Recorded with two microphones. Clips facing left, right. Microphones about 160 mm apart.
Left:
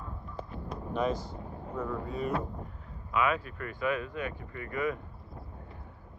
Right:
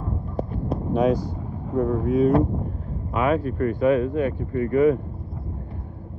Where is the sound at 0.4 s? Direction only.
60° right (ahead or behind).